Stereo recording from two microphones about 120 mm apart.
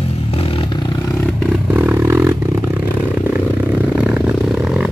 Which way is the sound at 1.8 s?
20° right (ahead or behind).